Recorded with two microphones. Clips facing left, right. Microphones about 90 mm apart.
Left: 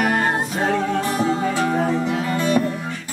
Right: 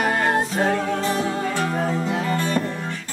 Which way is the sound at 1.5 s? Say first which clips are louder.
Left 3 dB; 20° left (ahead or behind).